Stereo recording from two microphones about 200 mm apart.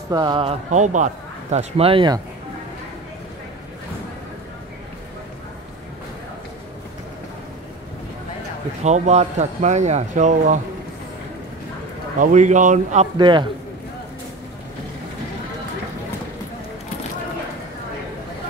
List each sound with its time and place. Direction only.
0.1 s a man's voice: 20° right (ahead or behind)
8.8 s speech: 35° right (ahead or behind)
12.2 s speech: 35° right (ahead or behind)
13.2 s a man's voice: 25° right (ahead or behind)